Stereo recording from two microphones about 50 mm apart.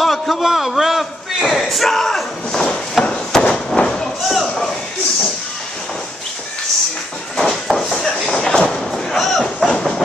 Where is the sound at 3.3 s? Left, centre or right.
Centre.